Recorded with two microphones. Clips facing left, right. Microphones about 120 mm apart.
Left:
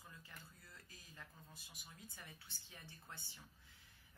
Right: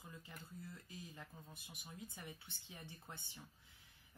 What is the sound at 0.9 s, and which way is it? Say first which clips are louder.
Speech: right 6 dB; 20° right (ahead or behind).